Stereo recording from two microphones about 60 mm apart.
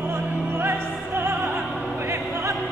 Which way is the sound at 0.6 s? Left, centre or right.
Right.